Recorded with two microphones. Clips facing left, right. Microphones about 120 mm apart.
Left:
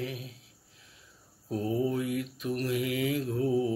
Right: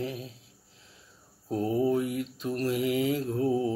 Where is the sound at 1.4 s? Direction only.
25° right (ahead or behind).